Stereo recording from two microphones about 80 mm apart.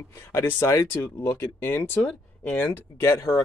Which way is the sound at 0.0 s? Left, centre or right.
Left.